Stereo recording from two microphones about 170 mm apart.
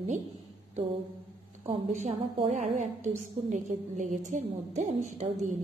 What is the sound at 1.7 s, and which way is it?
A woman's voice, 45° right (ahead or behind).